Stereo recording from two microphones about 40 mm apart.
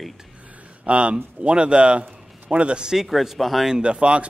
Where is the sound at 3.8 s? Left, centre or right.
Right.